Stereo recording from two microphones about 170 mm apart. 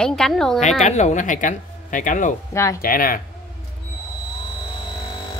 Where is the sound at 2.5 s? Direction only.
15° left (ahead or behind).